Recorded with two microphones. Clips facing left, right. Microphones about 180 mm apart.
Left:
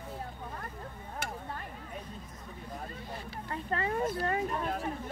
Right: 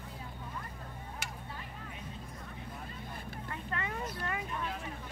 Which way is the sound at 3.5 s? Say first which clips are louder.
Left 7 dB; 35° left (ahead or behind).